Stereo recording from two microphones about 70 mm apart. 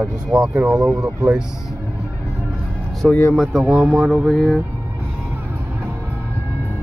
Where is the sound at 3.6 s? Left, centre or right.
Right.